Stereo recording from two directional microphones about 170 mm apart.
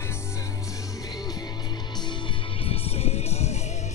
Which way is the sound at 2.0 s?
30° left (ahead or behind).